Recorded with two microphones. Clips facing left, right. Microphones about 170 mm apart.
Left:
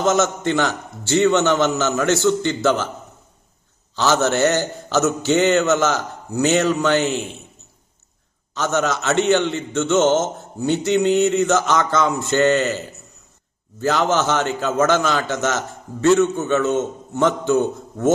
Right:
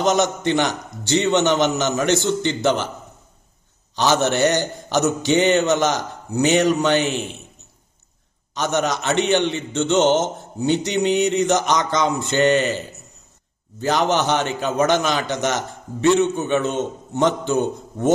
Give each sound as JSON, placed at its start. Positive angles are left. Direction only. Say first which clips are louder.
{"t": 0.0, "sound": "a man's voice", "louder": "even", "side_deg": -15}
{"t": 3.9, "sound": "a man's voice", "louder": "even", "side_deg": -15}
{"t": 8.5, "sound": "a man's voice", "louder": "left 1 dB", "side_deg": -15}